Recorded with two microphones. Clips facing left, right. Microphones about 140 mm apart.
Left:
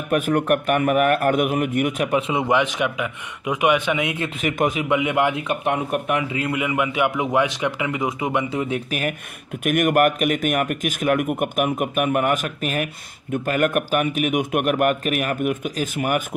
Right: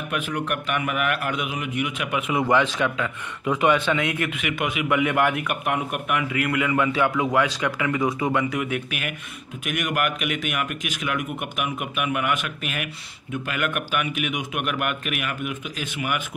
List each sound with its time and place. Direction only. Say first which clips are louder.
0.1 s speech: left 9 dB; 50° left (ahead or behind); by 4.3 s 20° left (ahead or behind)
4.4 s speech: left 5 dB; 40° left (ahead or behind)
4.8 s a man's voice: right 3 dB; 20° left (ahead or behind)
9.7 s speech: left 8 dB; 50° left (ahead or behind)